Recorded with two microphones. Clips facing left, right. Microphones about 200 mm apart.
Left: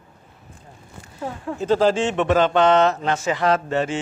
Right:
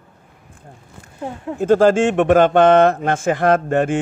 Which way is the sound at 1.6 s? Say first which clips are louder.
Right 5 dB; 50° right (ahead or behind).